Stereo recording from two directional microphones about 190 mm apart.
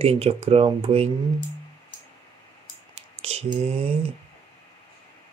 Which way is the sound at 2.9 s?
35° right (ahead or behind).